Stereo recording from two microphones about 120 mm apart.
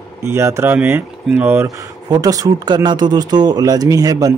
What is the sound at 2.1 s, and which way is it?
Speech, 30° right (ahead or behind).